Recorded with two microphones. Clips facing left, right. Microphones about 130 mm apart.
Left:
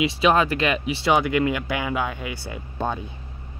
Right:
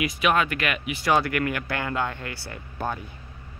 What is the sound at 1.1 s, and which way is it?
Speech, 20° left (ahead or behind).